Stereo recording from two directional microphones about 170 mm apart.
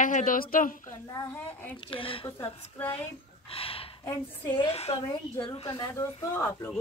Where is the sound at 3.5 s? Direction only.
35° left (ahead or behind).